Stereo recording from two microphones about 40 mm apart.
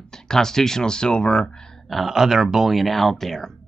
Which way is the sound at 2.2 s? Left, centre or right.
Centre.